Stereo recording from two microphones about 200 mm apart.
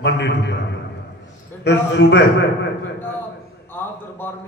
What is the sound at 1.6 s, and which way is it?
Speech, 60° left (ahead or behind).